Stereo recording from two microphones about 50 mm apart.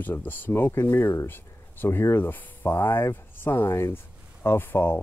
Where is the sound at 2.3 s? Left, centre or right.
Left.